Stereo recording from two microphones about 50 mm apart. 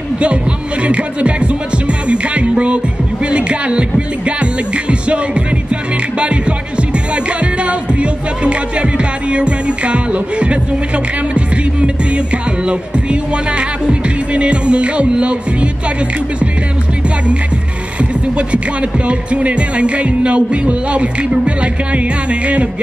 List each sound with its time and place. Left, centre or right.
0.8 s speech: right
7.6 s speech: right
18.5 s speech: right